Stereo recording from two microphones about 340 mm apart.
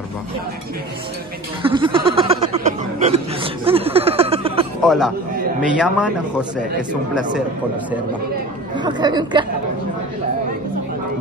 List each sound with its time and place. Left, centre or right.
1.6 s a sound: centre
3.6 s music: centre
4.8 s a man's voice: centre
8.7 s speech: centre